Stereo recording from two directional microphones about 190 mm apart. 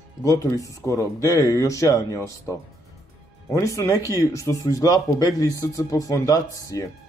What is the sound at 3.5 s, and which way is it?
Speech, 15° left (ahead or behind).